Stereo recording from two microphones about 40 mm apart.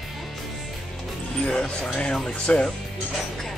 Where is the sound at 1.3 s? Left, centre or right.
Left.